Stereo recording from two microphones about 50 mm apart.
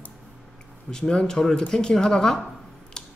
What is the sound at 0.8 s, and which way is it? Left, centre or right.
A man's voice, centre.